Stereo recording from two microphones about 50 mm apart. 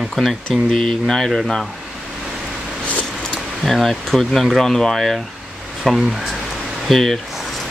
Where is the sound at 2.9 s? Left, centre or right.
Left.